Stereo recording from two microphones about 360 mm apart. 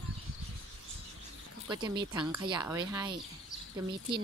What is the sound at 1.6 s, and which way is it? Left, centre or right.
Speech, centre.